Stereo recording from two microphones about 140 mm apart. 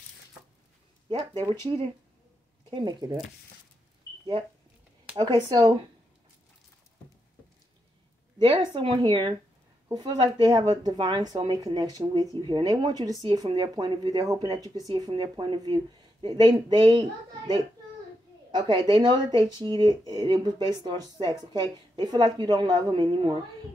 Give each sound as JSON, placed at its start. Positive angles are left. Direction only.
{"t": 2.7, "sound": "speech", "side_deg": -30}
{"t": 5.1, "sound": "speech", "side_deg": -35}
{"t": 8.4, "sound": "speech", "side_deg": -35}